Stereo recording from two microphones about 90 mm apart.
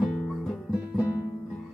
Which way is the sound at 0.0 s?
5° left (ahead or behind).